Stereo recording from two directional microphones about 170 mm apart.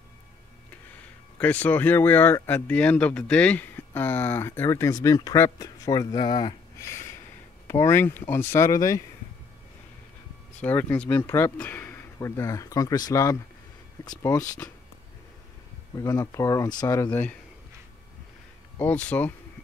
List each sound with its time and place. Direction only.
1.4 s speech: 10° left (ahead or behind)
10.6 s speech: 10° left (ahead or behind)
15.9 s speech: 20° left (ahead or behind)
18.8 s speech: 10° left (ahead or behind)